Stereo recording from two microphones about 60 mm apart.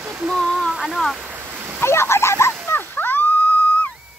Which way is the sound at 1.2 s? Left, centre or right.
Right.